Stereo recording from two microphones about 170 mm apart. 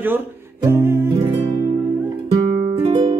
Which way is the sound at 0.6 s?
15° right (ahead or behind).